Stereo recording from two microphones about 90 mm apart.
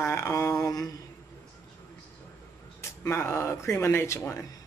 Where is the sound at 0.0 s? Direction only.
30° left (ahead or behind).